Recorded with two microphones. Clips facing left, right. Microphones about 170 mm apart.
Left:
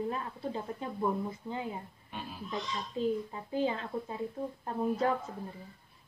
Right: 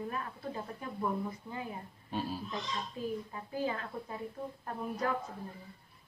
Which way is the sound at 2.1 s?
35° right (ahead or behind).